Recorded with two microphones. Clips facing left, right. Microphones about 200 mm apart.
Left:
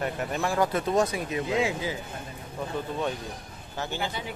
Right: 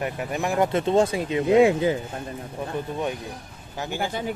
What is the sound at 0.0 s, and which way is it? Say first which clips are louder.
Speech: right 2 dB; 15° right (ahead or behind).